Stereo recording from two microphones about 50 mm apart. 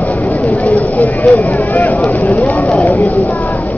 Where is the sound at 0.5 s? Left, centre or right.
Left.